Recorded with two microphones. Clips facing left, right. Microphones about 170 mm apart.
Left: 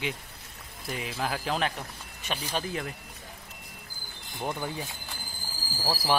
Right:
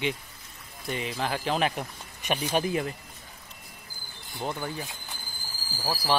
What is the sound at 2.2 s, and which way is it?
Speech, 15° right (ahead or behind).